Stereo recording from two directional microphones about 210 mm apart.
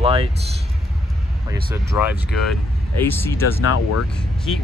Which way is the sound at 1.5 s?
10° right (ahead or behind).